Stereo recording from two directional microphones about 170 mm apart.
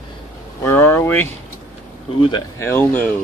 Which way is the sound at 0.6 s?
15° left (ahead or behind).